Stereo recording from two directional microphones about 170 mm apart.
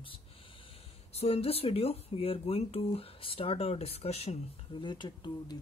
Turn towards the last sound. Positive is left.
turn(degrees=25)  # may be behind; listen again after turning